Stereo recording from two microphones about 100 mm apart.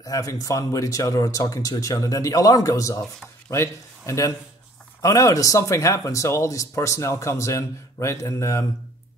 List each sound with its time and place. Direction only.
0.0 s a man's voice: 35° left (ahead or behind)